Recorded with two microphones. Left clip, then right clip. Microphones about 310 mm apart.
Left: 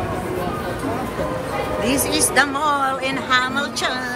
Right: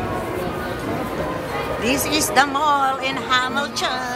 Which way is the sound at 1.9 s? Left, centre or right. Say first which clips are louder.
Right 2 dB; centre.